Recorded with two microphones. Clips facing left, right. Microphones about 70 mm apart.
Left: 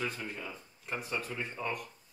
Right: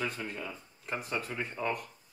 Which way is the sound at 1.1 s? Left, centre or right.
Centre.